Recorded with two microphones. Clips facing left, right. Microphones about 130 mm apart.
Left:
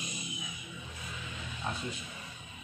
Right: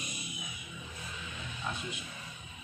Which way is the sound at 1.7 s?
35° left (ahead or behind).